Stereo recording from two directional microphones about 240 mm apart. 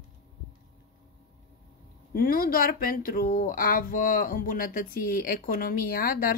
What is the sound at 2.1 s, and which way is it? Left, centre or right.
Speech, left.